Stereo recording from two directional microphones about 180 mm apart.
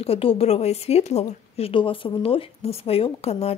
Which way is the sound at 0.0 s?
30° left (ahead or behind).